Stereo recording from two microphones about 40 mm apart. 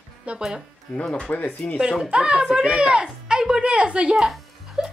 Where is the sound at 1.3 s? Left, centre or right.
Left.